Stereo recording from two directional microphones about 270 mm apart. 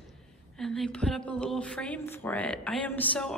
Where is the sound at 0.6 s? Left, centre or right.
Centre.